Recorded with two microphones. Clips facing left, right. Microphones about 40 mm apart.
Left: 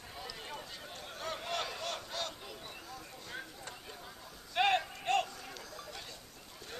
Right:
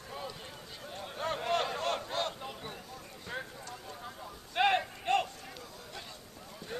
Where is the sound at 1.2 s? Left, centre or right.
Right.